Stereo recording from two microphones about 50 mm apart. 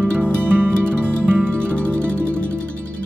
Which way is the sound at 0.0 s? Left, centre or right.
Right.